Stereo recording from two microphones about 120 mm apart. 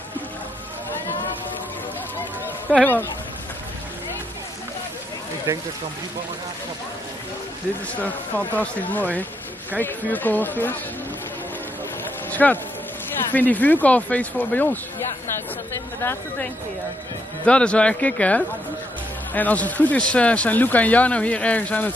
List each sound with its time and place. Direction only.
2.7 s a sound: centre (ahead or behind)
8.5 s speech: 15° left (ahead or behind)
12.3 s speech: 15° left (ahead or behind)
17.5 s speech: 10° left (ahead or behind)